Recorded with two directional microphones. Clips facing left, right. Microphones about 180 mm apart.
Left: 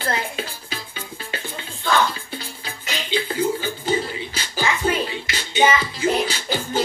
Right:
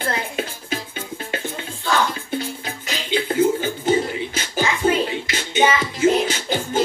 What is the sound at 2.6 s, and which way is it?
Music, 55° right (ahead or behind).